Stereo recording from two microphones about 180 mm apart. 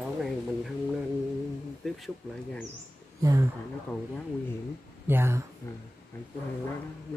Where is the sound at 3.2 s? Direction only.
15° right (ahead or behind).